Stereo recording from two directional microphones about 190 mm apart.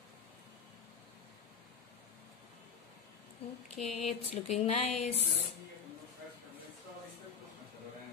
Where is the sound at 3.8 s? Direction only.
35° left (ahead or behind).